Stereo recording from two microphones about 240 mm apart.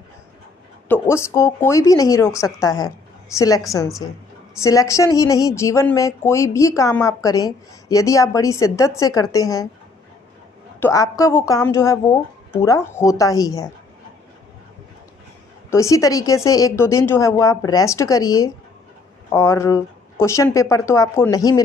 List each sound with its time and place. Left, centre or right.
1.0 s a woman's voice: centre
10.8 s speech: centre
15.7 s speech: centre